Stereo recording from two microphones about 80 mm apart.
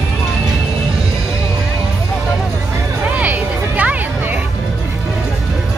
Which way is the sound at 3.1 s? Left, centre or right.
Centre.